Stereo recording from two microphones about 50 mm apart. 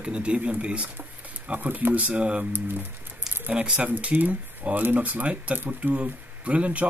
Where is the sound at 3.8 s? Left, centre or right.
Right.